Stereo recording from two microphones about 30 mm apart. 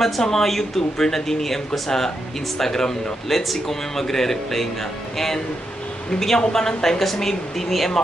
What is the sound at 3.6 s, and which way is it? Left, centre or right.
A man's voice, centre.